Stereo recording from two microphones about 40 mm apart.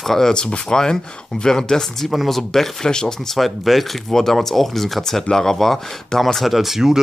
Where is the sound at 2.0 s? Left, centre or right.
Centre.